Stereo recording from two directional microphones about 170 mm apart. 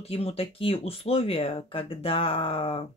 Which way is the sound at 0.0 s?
35° left (ahead or behind).